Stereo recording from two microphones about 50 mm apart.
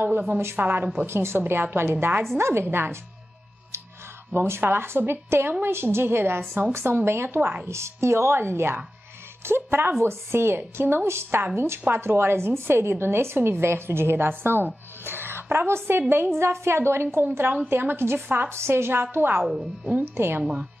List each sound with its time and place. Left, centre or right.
0.6 s a woman's voice: right
1.0 s a woman's voice: right
2.3 s a woman's voice: right
4.3 s a woman's voice: right
7.6 s a woman's voice: right
11.1 s a woman's voice: right
18.6 s a woman's voice: right